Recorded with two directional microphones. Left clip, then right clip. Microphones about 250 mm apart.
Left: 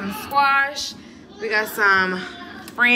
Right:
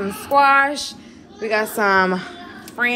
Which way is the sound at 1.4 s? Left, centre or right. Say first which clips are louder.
Right 1 dB; centre.